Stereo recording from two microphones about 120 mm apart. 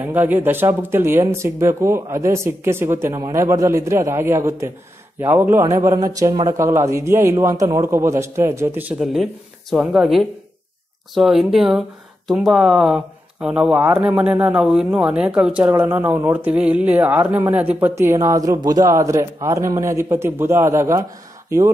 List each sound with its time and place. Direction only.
0.0 s speech: 15° right (ahead or behind)
9.0 s speech: centre (ahead or behind); by 21.0 s 25° right (ahead or behind)